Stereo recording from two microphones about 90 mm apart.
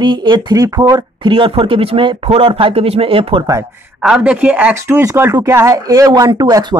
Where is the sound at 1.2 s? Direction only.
85° right.